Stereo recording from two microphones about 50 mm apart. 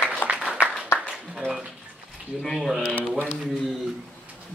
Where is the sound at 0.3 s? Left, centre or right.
Right.